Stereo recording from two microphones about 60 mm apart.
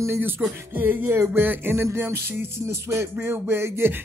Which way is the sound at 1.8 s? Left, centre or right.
Right.